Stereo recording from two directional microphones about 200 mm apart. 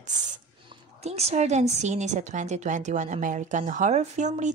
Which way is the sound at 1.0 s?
30° right (ahead or behind).